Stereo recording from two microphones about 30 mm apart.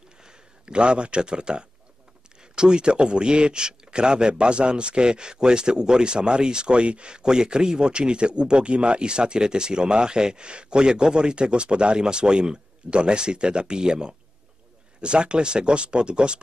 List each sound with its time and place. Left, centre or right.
0.2 s speech: right